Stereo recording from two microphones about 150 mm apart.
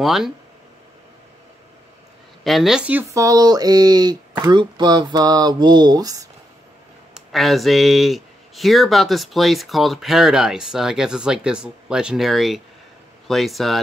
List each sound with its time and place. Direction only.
0.0 s speech: centre (ahead or behind)
2.4 s speech: centre (ahead or behind); by 6.2 s 25° right (ahead or behind)
7.2 s speech: centre (ahead or behind)